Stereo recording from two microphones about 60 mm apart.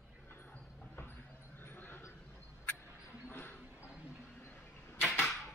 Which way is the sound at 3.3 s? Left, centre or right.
Left.